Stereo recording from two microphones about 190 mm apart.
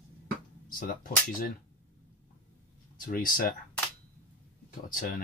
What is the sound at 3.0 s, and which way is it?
Speech, 50° left (ahead or behind).